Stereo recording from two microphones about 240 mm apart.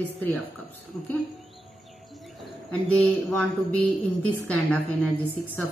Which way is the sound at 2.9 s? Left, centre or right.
Centre.